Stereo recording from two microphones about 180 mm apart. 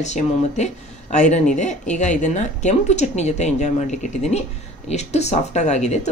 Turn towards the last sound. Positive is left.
turn(degrees=40)  # may be behind; listen again after turning